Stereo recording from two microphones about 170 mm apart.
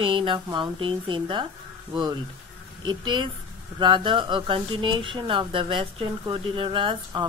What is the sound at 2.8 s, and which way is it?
Speech, 25° right (ahead or behind).